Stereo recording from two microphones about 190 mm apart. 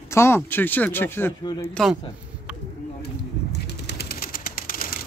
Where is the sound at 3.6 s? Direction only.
60° left (ahead or behind).